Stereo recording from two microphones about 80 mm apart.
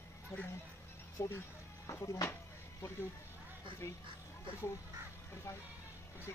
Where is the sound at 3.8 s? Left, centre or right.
Left.